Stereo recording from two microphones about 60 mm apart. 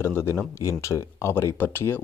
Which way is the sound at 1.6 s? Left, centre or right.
Left.